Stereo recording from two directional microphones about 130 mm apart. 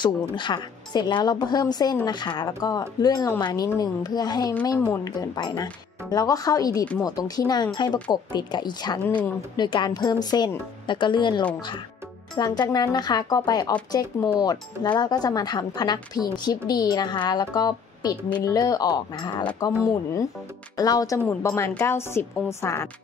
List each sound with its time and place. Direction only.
0.0 s speech: 35° left (ahead or behind)